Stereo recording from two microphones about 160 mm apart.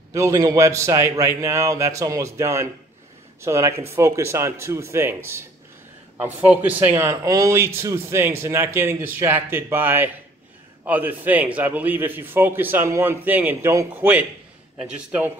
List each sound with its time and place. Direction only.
0.1 s a man's voice: 20° right (ahead or behind)